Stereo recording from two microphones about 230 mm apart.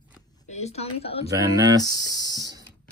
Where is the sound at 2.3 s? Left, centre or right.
Centre.